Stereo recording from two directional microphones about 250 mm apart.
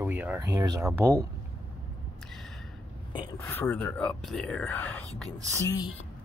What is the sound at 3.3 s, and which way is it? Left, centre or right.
Speech, centre.